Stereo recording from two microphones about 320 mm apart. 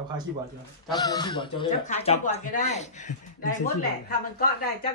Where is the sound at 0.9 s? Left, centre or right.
Centre.